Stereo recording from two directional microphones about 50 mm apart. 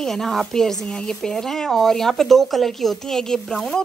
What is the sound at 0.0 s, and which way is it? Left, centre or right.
A woman's voice, centre.